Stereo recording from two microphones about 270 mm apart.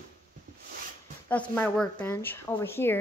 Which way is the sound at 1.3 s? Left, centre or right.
Centre.